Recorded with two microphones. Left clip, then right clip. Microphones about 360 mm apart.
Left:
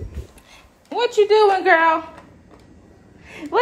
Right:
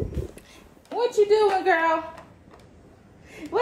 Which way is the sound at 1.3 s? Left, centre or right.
Centre.